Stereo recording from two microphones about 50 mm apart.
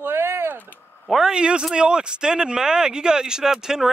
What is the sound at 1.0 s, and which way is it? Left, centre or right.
Speech, centre.